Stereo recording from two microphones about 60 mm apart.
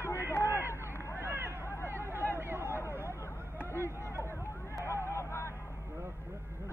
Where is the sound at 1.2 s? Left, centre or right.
Right.